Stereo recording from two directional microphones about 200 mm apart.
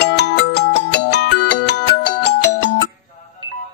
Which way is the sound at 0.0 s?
55° left (ahead or behind).